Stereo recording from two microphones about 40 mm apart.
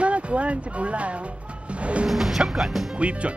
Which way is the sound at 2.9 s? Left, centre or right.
Right.